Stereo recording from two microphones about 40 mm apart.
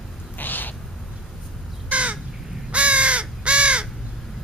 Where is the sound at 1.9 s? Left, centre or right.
Right.